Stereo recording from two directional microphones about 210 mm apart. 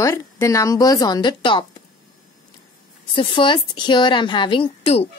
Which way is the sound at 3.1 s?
25° left (ahead or behind).